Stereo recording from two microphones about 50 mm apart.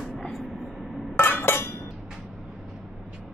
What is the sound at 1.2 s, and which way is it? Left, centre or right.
Chink, left.